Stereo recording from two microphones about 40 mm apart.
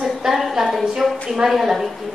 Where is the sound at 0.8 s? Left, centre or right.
Centre.